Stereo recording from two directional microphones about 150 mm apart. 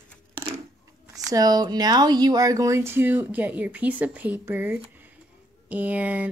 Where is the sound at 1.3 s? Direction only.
25° right (ahead or behind).